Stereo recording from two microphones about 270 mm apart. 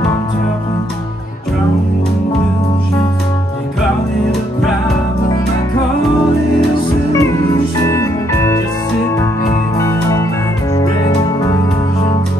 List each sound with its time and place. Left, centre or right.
7.2 s music: centre
9.8 s music: centre